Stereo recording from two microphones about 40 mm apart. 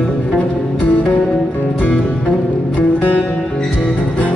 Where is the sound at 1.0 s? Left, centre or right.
Left.